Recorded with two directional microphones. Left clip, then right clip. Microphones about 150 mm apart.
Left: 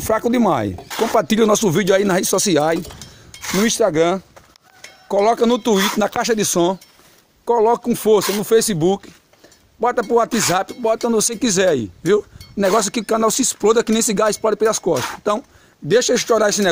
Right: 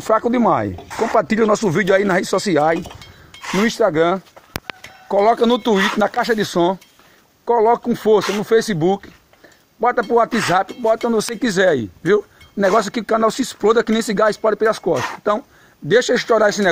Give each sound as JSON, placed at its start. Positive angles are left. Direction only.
{"t": 0.0, "sound": "speech", "side_deg": 15}
{"t": 3.3, "sound": "a sound", "side_deg": 45}
{"t": 3.6, "sound": "speech", "side_deg": 10}